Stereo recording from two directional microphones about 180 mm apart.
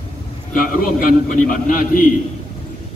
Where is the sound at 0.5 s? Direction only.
50° left (ahead or behind).